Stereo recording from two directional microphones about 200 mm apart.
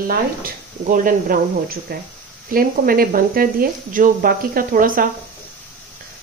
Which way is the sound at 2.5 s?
45° right (ahead or behind).